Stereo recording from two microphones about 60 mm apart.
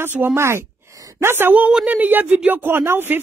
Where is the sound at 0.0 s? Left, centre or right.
Right.